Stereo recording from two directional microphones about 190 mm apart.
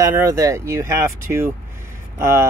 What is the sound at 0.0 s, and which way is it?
Speech, 15° right (ahead or behind).